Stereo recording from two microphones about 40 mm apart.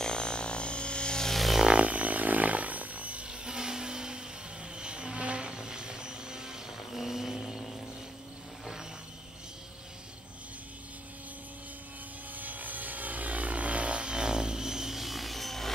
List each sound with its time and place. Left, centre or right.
0.0 s a sound: left
1.3 s music: centre
1.7 s a sound: right
3.3 s vehicle: centre
4.7 s music: right
6.9 s vehicle: centre
12.4 s helicopter: right; by 15.7 s centre